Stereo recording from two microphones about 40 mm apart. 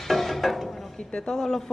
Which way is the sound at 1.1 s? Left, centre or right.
Centre.